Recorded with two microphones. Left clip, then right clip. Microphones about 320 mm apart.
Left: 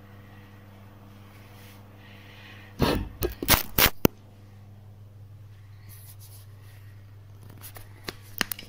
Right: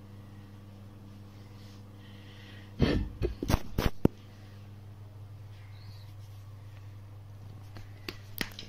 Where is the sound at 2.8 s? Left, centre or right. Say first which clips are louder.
Left 5 dB; left.